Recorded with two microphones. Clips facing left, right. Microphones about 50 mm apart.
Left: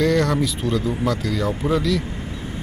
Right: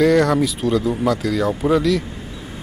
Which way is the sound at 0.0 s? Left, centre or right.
Centre.